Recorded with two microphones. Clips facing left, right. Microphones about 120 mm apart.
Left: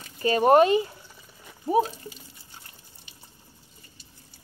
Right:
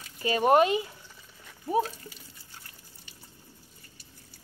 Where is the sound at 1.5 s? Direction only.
20° left (ahead or behind).